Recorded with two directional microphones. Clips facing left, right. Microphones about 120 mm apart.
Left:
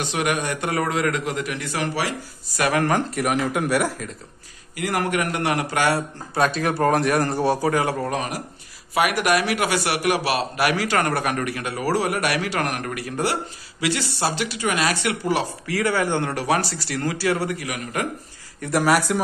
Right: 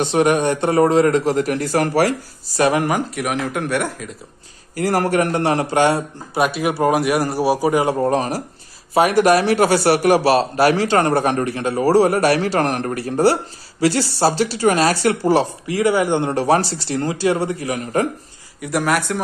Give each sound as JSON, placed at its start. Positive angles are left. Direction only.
{"t": 0.0, "sound": "speech", "side_deg": -30}
{"t": 2.4, "sound": "a man's voice", "side_deg": -30}
{"t": 2.8, "sound": "speech", "side_deg": -5}
{"t": 4.7, "sound": "a man's voice", "side_deg": -35}
{"t": 8.1, "sound": "speech", "side_deg": -35}
{"t": 15.6, "sound": "a man's voice", "side_deg": -20}
{"t": 18.6, "sound": "speech", "side_deg": 0}